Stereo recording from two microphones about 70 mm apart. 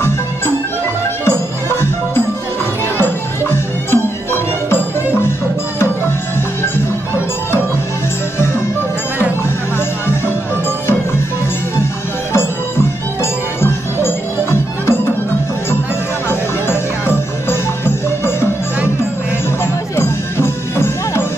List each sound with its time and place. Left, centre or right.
1.2 s music: left
9.8 s music: left
11.7 s music: left
16.3 s music: left
19.6 s music: left